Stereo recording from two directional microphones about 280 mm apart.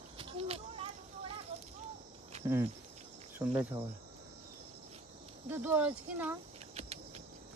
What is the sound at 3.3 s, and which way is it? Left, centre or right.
Cricket, centre.